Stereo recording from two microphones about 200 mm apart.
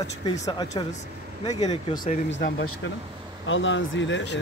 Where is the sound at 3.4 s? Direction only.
70° left (ahead or behind).